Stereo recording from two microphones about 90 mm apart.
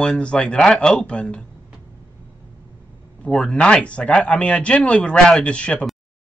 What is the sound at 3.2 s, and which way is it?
Speech, 10° left (ahead or behind).